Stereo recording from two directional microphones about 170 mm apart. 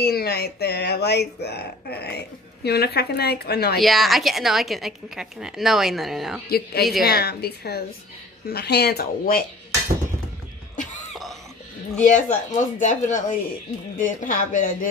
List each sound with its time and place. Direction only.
0.0 s speech: 70° left (ahead or behind)
3.8 s a woman's voice: centre (ahead or behind)
7.1 s speech: 70° left (ahead or behind)
12.0 s speech: 50° left (ahead or behind)